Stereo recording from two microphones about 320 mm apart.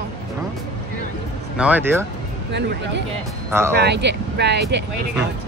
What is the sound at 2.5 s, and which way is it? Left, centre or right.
Speech, right.